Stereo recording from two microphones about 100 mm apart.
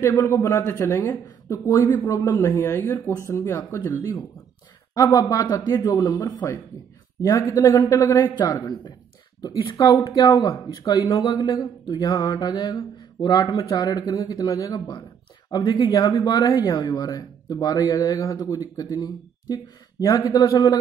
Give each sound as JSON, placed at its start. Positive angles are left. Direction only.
{"t": 0.0, "sound": "speech", "side_deg": 30}
{"t": 1.2, "sound": "speech", "side_deg": 35}
{"t": 4.9, "sound": "speech", "side_deg": 35}
{"t": 16.2, "sound": "speech", "side_deg": 40}